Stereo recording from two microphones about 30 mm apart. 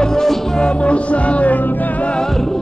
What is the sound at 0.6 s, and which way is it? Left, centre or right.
Music, left.